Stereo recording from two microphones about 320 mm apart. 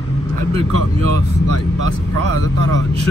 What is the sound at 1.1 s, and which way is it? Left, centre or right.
Speech, right.